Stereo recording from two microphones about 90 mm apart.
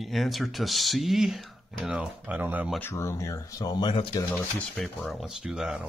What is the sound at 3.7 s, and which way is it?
Speech, 55° left (ahead or behind).